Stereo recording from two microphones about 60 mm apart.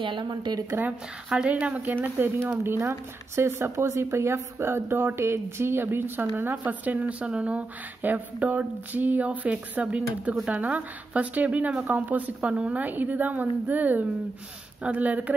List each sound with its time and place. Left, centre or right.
1.3 s a woman's voice: right